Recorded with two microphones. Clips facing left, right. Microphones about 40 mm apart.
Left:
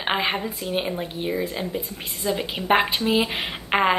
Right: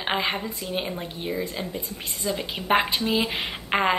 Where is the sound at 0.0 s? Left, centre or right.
Centre.